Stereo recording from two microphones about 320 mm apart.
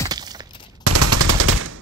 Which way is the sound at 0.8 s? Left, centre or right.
Right.